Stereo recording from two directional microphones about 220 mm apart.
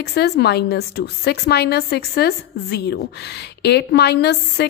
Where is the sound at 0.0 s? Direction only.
45° left (ahead or behind).